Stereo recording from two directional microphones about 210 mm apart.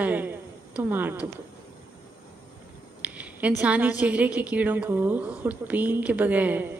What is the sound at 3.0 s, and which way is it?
A woman's voice, 5° right (ahead or behind).